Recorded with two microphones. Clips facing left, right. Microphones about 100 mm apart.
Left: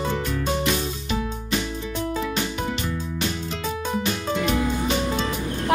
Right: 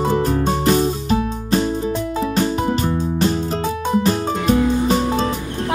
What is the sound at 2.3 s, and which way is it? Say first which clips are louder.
Music: right 8 dB; 40° right (ahead or behind).